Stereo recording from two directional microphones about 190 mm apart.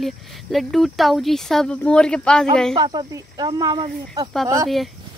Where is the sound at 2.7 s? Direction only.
20° right (ahead or behind).